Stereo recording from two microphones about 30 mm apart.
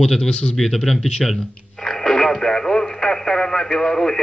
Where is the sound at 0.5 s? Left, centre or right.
Centre.